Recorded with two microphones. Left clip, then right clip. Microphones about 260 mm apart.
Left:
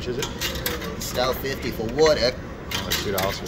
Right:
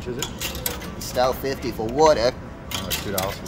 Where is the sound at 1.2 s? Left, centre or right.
Right.